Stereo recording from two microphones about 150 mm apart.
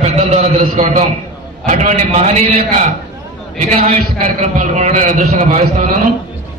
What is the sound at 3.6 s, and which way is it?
A man's voice, 45° right (ahead or behind).